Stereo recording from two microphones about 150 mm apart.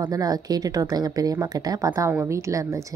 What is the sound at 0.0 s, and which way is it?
Speech, 25° right (ahead or behind).